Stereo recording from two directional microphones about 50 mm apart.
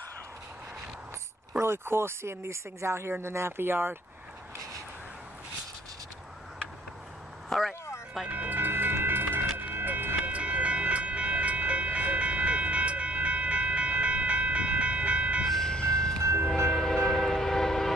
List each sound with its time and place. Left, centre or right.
1.6 s speech: right
7.4 s vehicle: centre
8.3 s vehicle: right
10.3 s train: right
15.6 s ice cream truck: centre
16.4 s train: centre